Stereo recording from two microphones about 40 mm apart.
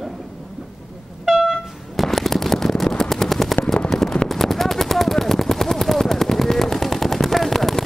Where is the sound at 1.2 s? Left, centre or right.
Centre.